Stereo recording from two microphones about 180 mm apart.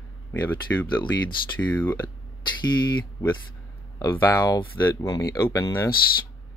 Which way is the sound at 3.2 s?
25° left (ahead or behind).